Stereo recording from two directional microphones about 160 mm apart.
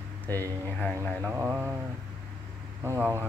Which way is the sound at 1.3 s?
10° right (ahead or behind).